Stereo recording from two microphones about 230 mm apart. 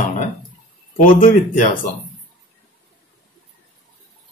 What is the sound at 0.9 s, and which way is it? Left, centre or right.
Speech, left.